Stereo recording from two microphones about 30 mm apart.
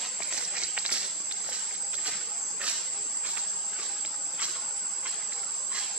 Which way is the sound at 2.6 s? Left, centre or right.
Right.